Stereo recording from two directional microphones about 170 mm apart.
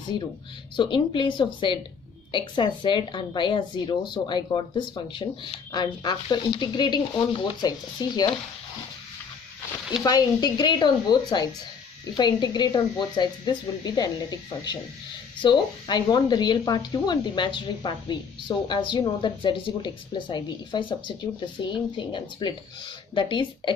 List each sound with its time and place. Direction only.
0.7 s speech: 30° left (ahead or behind)
10.0 s speech: 25° left (ahead or behind)